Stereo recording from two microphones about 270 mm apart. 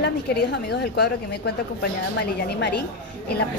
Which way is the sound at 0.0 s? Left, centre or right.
Left.